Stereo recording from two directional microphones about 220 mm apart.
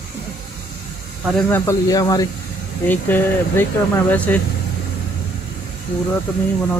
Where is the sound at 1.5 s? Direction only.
10° left (ahead or behind).